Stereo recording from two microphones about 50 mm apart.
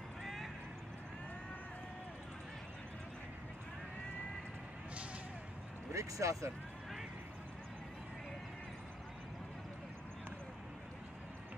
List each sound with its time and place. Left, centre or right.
0.2 s vehicle: centre
5.9 s speech: right